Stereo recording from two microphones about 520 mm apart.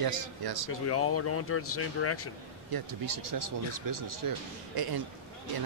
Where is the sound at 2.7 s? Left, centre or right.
Right.